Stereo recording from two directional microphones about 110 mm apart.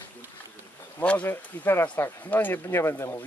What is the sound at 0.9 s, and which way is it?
Speech, 15° left (ahead or behind).